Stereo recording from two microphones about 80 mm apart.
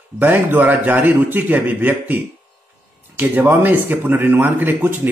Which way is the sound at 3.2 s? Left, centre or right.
Right.